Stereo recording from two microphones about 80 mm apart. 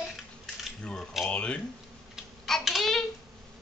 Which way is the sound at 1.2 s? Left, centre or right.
Centre.